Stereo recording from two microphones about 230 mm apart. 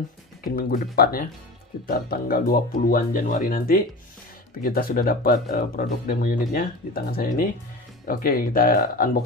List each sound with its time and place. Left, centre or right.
0.4 s speech: left